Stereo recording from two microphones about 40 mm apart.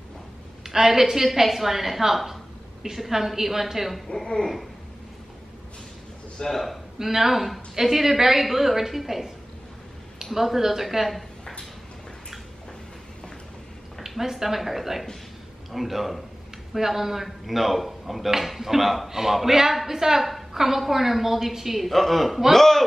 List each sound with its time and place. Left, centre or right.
0.7 s a woman's voice: centre
4.1 s speech: centre
6.5 s speech: centre
7.0 s a woman's voice: centre
10.3 s speech: centre
14.0 s a woman's voice: centre